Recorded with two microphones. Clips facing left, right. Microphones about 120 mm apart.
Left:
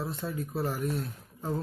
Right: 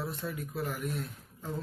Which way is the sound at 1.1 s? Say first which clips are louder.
Left 6 dB; 40° left (ahead or behind).